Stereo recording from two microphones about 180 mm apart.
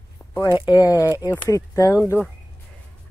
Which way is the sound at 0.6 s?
20° left (ahead or behind).